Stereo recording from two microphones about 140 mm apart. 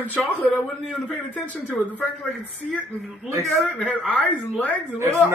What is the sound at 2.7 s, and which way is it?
Speech, 5° left (ahead or behind).